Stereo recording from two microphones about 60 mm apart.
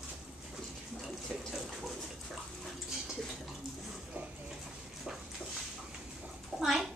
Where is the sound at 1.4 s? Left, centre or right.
Centre.